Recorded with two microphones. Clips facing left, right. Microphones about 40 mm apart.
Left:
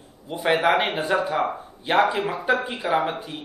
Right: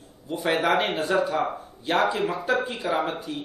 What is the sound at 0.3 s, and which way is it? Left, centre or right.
A man's voice, centre.